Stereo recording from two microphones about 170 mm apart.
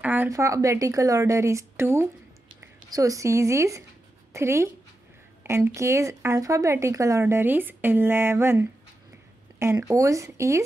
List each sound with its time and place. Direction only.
0.0 s speech: 10° right (ahead or behind)